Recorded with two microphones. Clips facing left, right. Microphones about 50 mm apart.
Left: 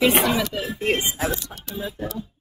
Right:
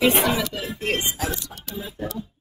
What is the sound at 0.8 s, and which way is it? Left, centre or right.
Speech, centre.